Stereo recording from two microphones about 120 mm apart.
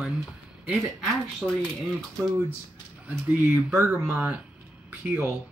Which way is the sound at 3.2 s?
15° right (ahead or behind).